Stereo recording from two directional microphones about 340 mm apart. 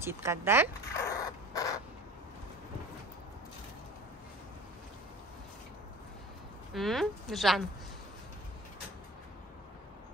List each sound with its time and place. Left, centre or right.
0.0 s speech: centre
0.9 s rodents: centre
6.7 s speech: centre